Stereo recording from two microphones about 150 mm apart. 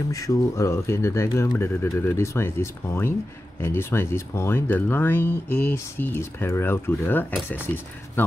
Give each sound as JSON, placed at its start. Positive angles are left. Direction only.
{"t": 0.1, "sound": "speech", "side_deg": 20}